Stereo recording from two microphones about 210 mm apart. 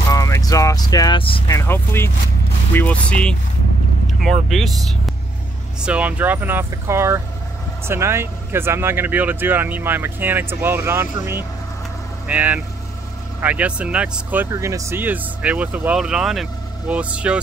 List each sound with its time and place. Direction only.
0.1 s speech: 15° left (ahead or behind)
1.5 s speech: 10° left (ahead or behind); by 17.4 s 5° right (ahead or behind)